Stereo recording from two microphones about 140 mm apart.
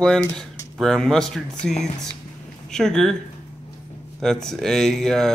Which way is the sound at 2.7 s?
5° left (ahead or behind).